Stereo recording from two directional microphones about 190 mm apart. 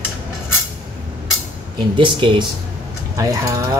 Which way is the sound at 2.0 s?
25° right (ahead or behind).